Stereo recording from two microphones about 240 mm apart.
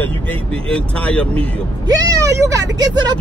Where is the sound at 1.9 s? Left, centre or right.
Centre.